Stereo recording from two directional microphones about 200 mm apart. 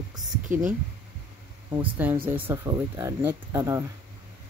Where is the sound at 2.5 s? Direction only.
15° right (ahead or behind).